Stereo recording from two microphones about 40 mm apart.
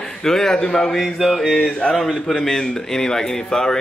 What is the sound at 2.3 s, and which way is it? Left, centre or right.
Speech, centre.